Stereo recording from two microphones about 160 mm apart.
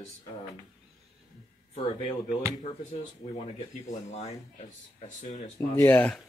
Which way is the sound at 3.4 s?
45° left (ahead or behind).